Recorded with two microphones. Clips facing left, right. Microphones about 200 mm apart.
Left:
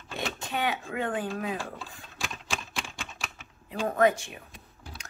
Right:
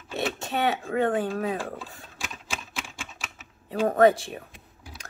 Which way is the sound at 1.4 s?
35° right (ahead or behind).